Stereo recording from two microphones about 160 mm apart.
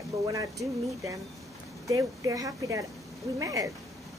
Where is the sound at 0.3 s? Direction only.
20° right (ahead or behind).